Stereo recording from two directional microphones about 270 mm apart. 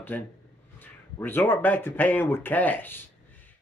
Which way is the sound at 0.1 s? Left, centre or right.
Centre.